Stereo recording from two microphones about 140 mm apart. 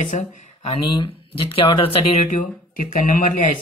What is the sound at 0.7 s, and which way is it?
Speech, 35° left (ahead or behind).